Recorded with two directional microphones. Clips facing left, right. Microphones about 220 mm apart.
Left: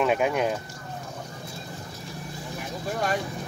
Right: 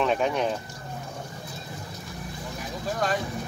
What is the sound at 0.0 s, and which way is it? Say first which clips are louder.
Speech: left 1 dB; 10° left (ahead or behind).